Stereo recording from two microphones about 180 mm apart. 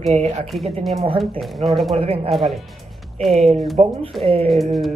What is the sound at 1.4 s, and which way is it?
Speech, centre (ahead or behind).